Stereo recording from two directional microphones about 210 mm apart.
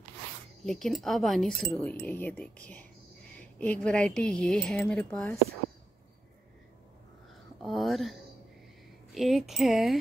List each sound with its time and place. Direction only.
0.7 s speech: centre (ahead or behind)
7.6 s speech: centre (ahead or behind)